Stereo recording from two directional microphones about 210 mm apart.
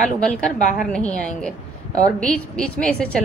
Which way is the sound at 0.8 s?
5° left (ahead or behind).